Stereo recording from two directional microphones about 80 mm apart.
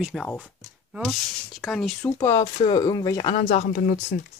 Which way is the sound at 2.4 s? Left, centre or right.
Left.